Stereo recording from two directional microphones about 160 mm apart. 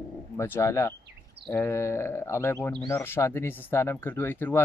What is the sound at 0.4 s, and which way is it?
Speech, 15° left (ahead or behind).